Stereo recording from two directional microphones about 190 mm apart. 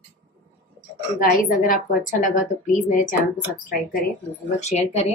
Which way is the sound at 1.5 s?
45° left (ahead or behind).